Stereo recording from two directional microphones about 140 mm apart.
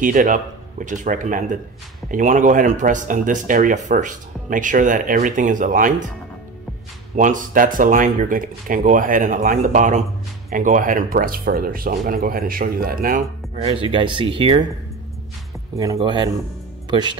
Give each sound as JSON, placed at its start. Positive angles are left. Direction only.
{"t": 0.0, "sound": "speech", "side_deg": -70}
{"t": 7.2, "sound": "speech", "side_deg": -70}
{"t": 10.5, "sound": "speech", "side_deg": -75}
{"t": 13.7, "sound": "speech", "side_deg": -40}
{"t": 15.7, "sound": "speech", "side_deg": -25}
{"t": 16.0, "sound": "speech", "side_deg": -35}